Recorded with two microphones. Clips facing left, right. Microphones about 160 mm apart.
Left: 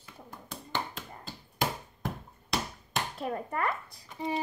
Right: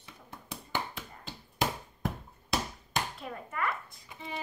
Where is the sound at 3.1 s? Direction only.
40° left (ahead or behind).